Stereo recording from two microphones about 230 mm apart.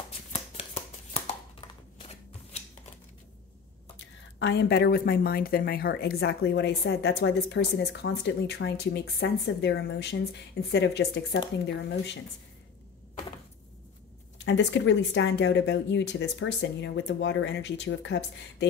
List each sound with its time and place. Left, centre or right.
1.1 s a sound: left
4.4 s speech: left
14.4 s speech: left